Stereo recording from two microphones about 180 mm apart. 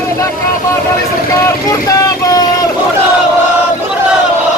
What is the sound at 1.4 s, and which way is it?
Vehicle, 20° left (ahead or behind).